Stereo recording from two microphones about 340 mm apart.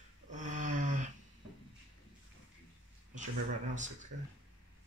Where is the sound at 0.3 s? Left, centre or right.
Right.